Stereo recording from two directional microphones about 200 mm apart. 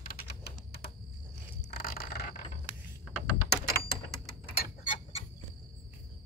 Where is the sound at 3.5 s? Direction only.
55° left (ahead or behind).